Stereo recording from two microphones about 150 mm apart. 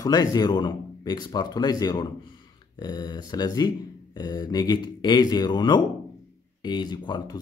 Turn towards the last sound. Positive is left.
turn(degrees=30)  # may be behind; listen again after turning